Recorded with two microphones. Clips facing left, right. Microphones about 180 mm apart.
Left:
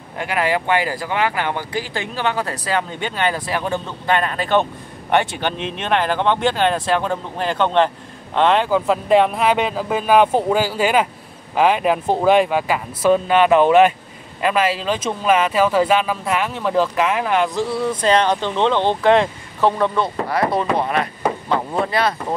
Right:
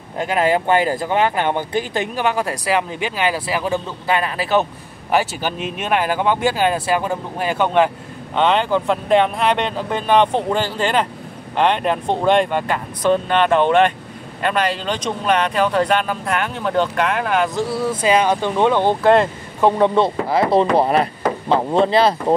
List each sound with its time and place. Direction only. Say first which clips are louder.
0.3 s speech: right 3 dB; 25° right (ahead or behind); by 19.7 s 5° right (ahead or behind)
19.8 s speech: right 4 dB; 25° right (ahead or behind)